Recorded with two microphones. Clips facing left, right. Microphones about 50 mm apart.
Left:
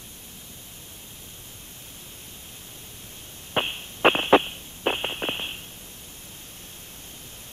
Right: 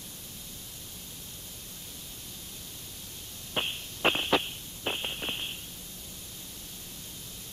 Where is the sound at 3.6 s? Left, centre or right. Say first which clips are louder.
Left 7 dB; left.